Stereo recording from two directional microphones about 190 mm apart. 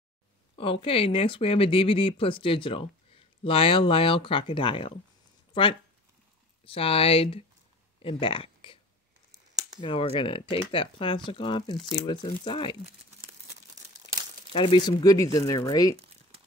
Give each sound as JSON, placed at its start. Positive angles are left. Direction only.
{"t": 0.6, "sound": "speech", "side_deg": 30}
{"t": 9.8, "sound": "speech", "side_deg": 30}
{"t": 14.5, "sound": "speech", "side_deg": 25}